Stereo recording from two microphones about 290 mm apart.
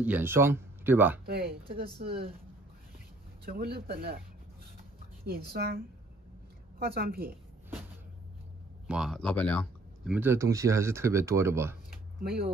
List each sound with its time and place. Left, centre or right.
0.0 s speech: centre
1.2 s speech: right
3.4 s speech: right
5.2 s speech: right
6.8 s speech: right
8.8 s speech: centre
10.1 s speech: centre
11.9 s a sound: right